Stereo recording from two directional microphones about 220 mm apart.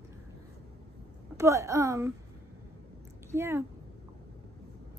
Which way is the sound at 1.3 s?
15° right (ahead or behind).